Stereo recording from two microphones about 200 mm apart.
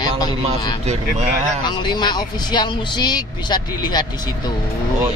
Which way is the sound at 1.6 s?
20° left (ahead or behind).